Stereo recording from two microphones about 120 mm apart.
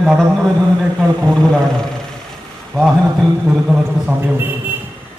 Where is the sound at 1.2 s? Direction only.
5° left (ahead or behind).